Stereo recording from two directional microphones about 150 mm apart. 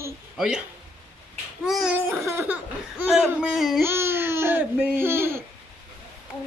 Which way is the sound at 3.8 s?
15° right (ahead or behind).